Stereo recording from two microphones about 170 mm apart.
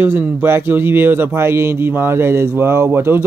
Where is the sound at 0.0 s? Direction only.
10° right (ahead or behind).